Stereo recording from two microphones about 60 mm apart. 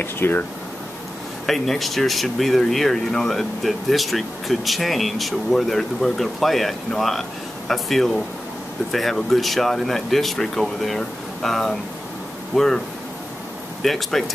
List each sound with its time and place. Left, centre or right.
0.0 s speech: left
1.4 s speech: centre
9.3 s speech: centre
13.8 s speech: centre